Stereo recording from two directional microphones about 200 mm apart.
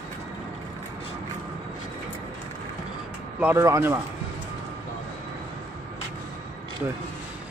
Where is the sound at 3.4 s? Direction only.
10° right (ahead or behind).